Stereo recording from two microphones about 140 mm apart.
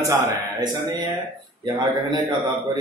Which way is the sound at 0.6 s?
30° right (ahead or behind).